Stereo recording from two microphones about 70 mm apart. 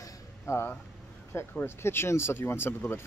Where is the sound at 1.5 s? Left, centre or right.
Left.